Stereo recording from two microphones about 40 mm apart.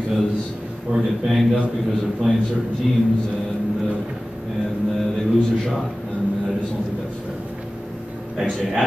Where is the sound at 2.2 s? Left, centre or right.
Centre.